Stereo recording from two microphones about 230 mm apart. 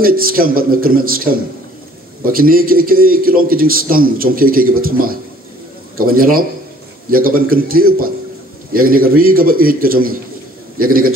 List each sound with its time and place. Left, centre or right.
0.0 s a man's voice: right